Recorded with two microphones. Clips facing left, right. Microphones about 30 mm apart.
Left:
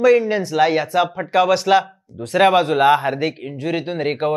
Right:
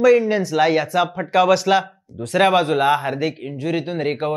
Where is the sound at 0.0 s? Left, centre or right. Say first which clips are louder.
Even; centre.